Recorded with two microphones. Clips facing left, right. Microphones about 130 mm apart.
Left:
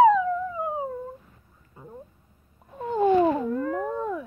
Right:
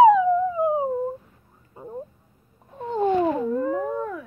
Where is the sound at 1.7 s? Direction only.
30° right (ahead or behind).